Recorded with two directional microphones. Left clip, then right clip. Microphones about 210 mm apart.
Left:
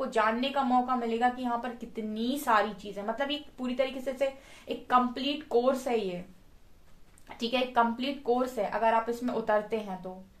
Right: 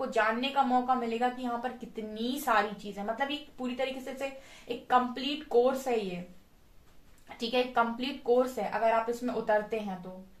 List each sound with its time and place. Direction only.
0.1 s a woman's voice: 45° left (ahead or behind)
7.3 s a woman's voice: 45° left (ahead or behind)